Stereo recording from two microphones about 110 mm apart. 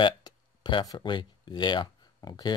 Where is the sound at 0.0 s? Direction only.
45° left (ahead or behind).